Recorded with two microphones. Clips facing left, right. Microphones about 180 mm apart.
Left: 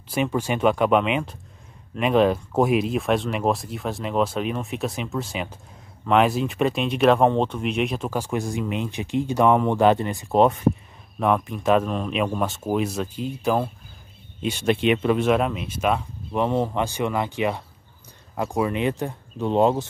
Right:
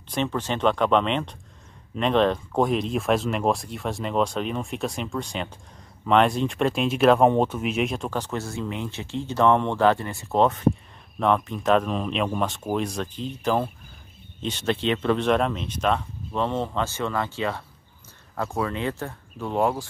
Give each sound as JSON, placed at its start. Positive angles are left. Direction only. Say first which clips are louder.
{"t": 0.1, "sound": "speech", "louder": "left 3 dB", "side_deg": 10}